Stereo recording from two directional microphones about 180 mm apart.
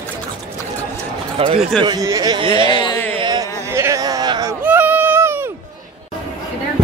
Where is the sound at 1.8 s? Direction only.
20° right (ahead or behind).